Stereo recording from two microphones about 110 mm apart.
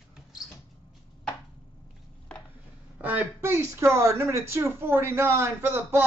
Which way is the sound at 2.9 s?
15° right (ahead or behind).